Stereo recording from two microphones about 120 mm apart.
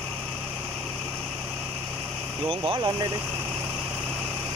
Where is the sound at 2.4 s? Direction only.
50° right (ahead or behind).